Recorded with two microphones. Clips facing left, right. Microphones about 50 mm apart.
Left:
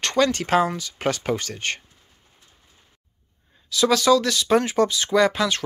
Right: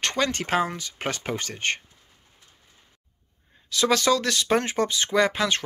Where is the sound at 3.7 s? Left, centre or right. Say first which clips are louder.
Left 4 dB; right.